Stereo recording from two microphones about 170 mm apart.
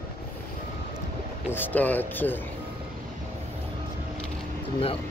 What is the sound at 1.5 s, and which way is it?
Speech, 10° left (ahead or behind).